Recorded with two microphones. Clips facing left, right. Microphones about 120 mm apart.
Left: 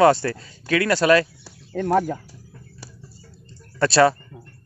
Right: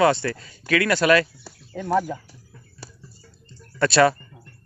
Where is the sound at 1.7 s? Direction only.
50° left (ahead or behind).